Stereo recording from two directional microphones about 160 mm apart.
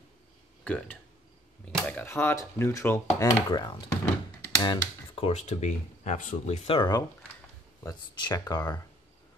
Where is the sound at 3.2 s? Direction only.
30° left (ahead or behind).